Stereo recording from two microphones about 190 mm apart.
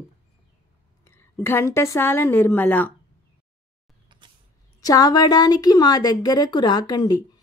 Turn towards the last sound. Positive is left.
turn(degrees=20)  # may be behind; listen again after turning